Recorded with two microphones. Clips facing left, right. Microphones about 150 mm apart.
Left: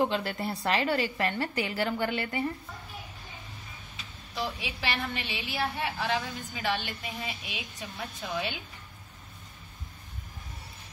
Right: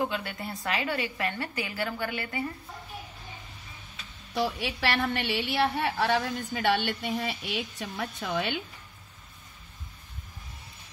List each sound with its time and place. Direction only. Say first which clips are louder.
0.0 s a woman's voice: left 3 dB; 30° left (ahead or behind)
4.3 s a woman's voice: right 5 dB; 65° right (ahead or behind)